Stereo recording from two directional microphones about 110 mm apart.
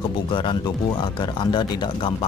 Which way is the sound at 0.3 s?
50° left (ahead or behind).